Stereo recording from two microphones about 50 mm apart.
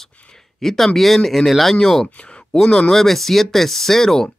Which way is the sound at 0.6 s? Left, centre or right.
Centre.